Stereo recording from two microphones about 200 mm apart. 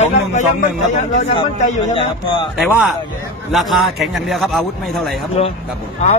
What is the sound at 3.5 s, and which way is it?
A man's voice, centre (ahead or behind).